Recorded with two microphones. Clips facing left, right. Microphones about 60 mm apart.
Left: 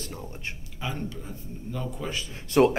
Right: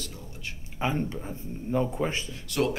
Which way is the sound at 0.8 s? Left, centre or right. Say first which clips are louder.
Right 5 dB; right.